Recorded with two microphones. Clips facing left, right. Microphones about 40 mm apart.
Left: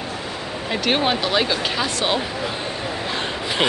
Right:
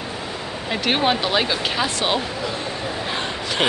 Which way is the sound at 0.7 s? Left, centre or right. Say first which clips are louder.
Even; centre.